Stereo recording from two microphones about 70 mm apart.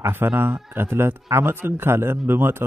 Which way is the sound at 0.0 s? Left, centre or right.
Right.